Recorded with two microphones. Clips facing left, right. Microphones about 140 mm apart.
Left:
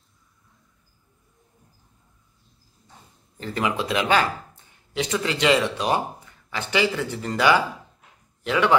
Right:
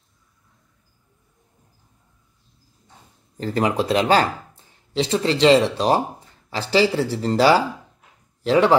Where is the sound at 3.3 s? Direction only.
40° right (ahead or behind).